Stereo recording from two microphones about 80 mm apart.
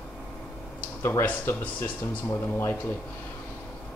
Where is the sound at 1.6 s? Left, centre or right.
Left.